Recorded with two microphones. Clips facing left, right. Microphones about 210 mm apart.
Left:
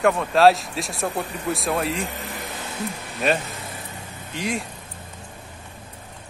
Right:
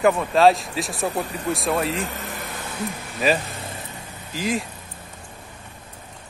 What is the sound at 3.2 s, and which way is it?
Speech, centre (ahead or behind).